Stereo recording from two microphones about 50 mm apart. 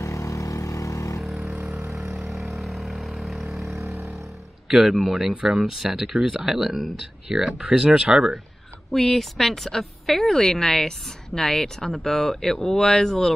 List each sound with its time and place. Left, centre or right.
0.0 s vehicle: left
2.5 s vehicle: centre
4.6 s speech: centre
8.9 s a woman's voice: centre